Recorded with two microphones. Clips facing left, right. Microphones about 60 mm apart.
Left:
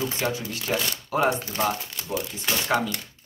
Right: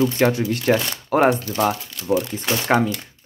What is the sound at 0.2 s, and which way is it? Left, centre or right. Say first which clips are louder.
Speech: right 9 dB; right.